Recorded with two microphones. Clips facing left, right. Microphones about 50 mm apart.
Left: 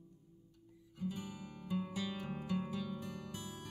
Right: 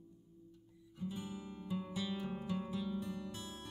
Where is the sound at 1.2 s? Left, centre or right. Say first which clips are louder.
Right 2 dB; centre.